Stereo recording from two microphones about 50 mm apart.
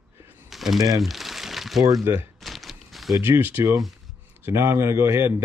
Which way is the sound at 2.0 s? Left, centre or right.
Right.